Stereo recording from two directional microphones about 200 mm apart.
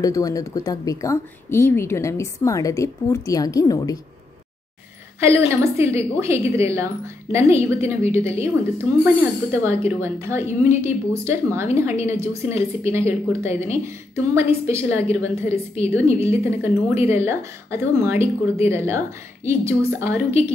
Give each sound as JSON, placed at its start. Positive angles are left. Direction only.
{"t": 0.0, "sound": "speech", "side_deg": 15}
{"t": 5.5, "sound": "speech", "side_deg": -15}